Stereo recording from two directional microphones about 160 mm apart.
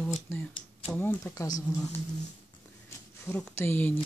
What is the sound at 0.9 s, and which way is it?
Speech, 15° left (ahead or behind).